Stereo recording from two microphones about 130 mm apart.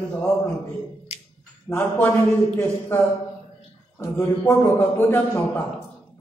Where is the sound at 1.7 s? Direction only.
20° left (ahead or behind).